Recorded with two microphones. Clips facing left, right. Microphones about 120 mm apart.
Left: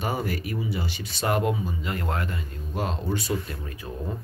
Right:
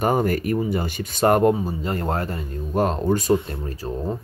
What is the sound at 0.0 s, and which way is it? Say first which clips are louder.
Speech: right 8 dB; 50° right (ahead or behind).